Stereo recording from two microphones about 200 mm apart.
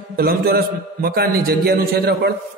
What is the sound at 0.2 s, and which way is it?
A man's voice, 45° right (ahead or behind).